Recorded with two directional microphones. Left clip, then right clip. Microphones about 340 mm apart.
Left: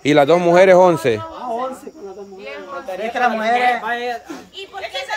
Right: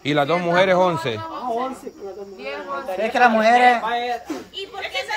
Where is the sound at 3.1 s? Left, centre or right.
Right.